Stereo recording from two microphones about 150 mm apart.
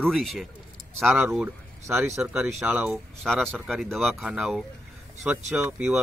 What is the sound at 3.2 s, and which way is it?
A man's voice, centre (ahead or behind).